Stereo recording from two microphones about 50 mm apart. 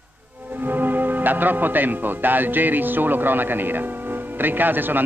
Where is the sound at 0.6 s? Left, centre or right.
Right.